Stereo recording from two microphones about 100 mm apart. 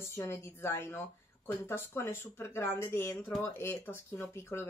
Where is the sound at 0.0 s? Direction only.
25° left (ahead or behind).